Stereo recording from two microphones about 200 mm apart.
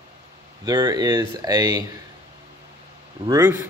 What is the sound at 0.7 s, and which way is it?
Speech, 20° right (ahead or behind).